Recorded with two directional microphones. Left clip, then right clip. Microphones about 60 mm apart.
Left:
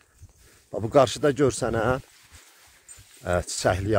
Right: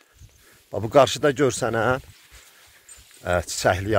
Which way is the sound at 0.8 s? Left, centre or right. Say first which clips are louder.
Right 3 dB; centre.